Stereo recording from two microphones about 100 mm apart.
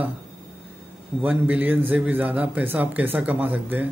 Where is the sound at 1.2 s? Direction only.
15° right (ahead or behind).